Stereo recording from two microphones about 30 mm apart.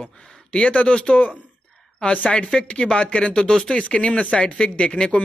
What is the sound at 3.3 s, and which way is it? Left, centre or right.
Speech, left.